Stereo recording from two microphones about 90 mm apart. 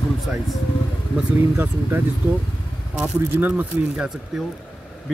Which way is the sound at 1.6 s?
25° right (ahead or behind).